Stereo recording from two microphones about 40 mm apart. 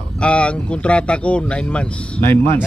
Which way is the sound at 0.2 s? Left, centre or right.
Left.